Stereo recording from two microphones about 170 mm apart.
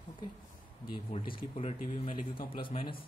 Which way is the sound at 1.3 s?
35° left (ahead or behind).